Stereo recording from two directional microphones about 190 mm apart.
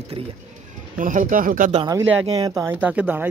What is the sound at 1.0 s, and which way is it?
Speech, 45° right (ahead or behind).